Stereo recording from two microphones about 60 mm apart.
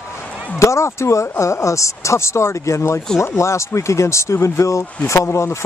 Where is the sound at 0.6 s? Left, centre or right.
Left.